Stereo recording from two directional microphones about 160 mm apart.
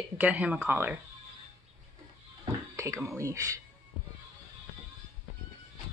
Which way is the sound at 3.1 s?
20° right (ahead or behind).